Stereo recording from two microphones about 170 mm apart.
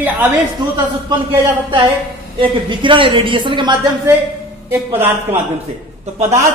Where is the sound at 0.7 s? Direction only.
25° right (ahead or behind).